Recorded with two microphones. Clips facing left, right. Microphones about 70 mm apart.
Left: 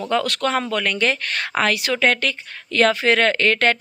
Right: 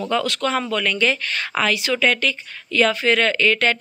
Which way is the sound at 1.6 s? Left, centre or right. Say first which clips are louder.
Left 1 dB; left.